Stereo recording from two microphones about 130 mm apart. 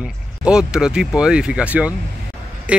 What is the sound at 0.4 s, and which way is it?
Speech, 5° right (ahead or behind).